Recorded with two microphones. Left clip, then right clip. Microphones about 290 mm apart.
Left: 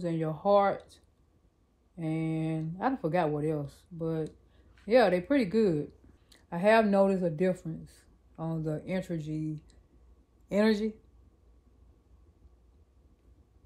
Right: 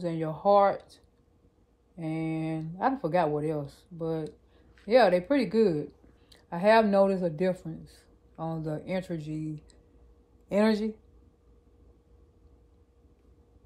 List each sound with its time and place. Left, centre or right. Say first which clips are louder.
0.0 s a woman's voice: right 3 dB; centre